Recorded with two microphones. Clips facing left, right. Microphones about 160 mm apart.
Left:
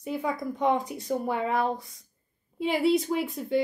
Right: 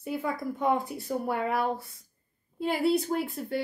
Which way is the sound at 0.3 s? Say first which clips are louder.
Left 2 dB; 5° right (ahead or behind).